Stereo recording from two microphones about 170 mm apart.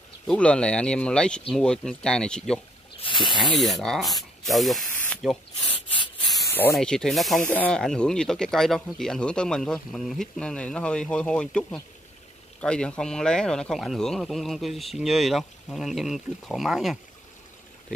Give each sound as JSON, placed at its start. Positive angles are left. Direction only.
{"t": 0.3, "sound": "speech", "side_deg": 5}
{"t": 3.0, "sound": "snake", "side_deg": 30}
{"t": 3.5, "sound": "speech", "side_deg": 0}
{"t": 6.7, "sound": "speech", "side_deg": 5}